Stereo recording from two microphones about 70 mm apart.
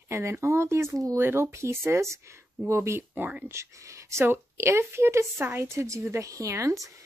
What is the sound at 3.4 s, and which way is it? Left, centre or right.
A woman's voice, right.